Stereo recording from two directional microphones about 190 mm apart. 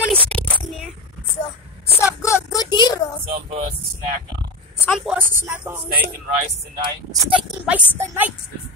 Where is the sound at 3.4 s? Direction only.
30° right (ahead or behind).